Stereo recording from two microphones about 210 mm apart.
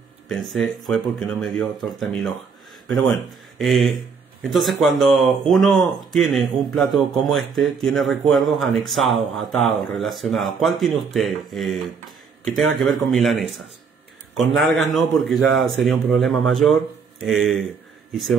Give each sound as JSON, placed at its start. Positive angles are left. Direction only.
{"t": 0.3, "sound": "speech", "side_deg": 0}